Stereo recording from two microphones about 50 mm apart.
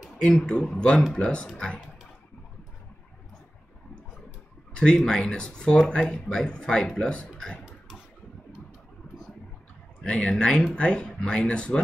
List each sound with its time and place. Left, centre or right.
0.0 s speech: centre
4.7 s speech: centre
7.3 s a sound: centre
10.0 s speech: centre